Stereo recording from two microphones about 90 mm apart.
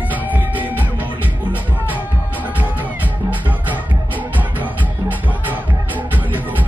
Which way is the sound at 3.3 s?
20° right (ahead or behind).